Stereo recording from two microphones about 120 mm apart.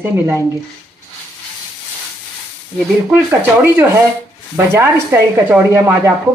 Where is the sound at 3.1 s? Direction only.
20° right (ahead or behind).